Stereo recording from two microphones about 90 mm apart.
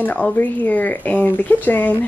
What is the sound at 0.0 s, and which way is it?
Speech, 20° left (ahead or behind).